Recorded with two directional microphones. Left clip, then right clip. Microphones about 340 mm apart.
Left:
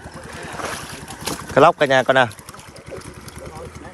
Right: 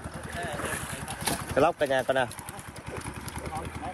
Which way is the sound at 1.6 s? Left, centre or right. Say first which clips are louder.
Left 11 dB; left.